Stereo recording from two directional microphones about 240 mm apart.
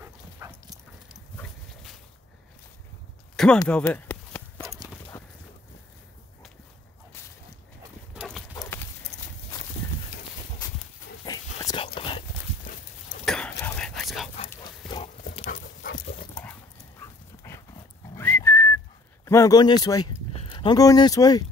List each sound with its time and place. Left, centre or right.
0.0 s dog: centre
1.3 s dog: centre
3.6 s a sound: centre
4.6 s clip-clop: centre
5.1 s a sound: centre
8.1 s clip-clop: centre
8.5 s clip-clop: centre
9.1 s walk: centre
11.2 s a sound: centre
12.7 s dog: left
13.2 s a sound: centre
15.5 s dog: left
18.1 s whistling: centre
19.2 s speech: centre